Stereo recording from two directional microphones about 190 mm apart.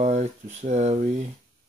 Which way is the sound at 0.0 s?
35° right (ahead or behind).